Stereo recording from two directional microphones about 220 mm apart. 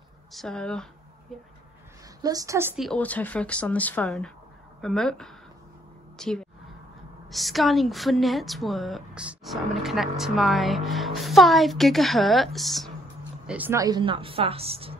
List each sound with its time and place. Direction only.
0.3 s a woman's voice: centre (ahead or behind)
2.2 s a woman's voice: 15° right (ahead or behind)